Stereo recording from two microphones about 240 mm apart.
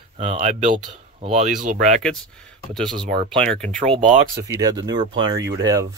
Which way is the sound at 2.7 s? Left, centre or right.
Centre.